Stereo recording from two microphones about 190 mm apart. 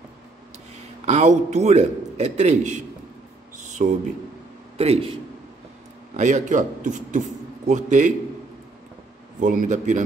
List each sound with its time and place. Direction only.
1.0 s a man's voice: 35° right (ahead or behind)
3.8 s speech: 45° right (ahead or behind)
4.7 s a man's voice: 30° right (ahead or behind)
6.1 s a man's voice: 40° right (ahead or behind)
9.4 s a man's voice: 40° right (ahead or behind)